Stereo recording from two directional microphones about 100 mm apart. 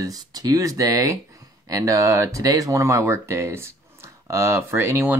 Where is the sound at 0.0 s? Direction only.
40° right (ahead or behind).